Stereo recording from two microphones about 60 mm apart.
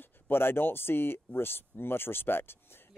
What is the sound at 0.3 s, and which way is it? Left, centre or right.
Speech, left.